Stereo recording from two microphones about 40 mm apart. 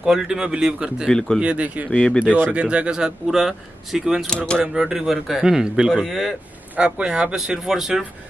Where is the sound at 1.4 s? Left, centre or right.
Right.